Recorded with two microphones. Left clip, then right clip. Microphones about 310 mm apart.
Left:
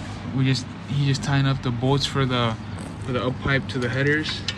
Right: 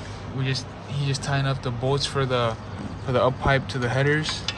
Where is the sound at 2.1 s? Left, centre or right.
Centre.